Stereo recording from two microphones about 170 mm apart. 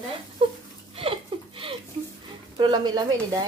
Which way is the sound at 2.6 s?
25° right (ahead or behind).